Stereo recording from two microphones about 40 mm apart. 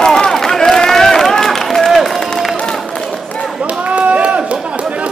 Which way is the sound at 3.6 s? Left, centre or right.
Right.